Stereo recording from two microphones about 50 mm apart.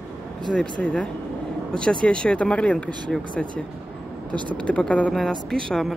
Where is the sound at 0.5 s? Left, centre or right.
Left.